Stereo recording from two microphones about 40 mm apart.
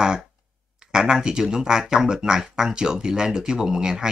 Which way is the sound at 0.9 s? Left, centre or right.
Centre.